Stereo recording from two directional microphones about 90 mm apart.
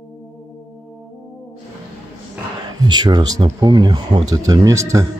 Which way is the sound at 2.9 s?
55° right (ahead or behind).